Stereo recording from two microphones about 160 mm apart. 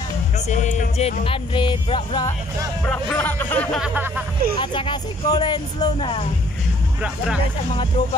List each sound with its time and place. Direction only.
0.5 s music: 50° left (ahead or behind); by 2.2 s 30° left (ahead or behind)
2.9 s speech: 10° left (ahead or behind)
4.6 s speech: 30° left (ahead or behind)